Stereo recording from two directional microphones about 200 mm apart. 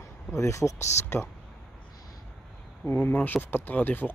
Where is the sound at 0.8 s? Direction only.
35° left (ahead or behind).